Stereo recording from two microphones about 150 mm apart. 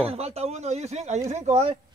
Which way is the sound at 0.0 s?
40° right (ahead or behind).